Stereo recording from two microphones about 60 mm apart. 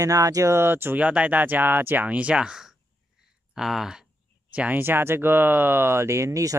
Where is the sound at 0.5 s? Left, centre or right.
Right.